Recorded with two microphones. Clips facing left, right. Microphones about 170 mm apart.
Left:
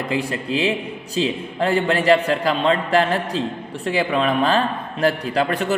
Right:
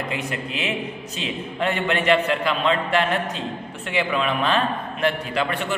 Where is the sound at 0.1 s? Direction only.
35° left (ahead or behind).